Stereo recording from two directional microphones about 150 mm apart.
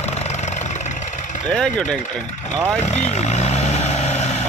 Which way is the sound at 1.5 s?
5° left (ahead or behind).